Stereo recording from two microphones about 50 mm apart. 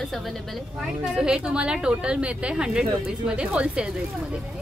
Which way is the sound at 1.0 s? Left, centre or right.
Centre.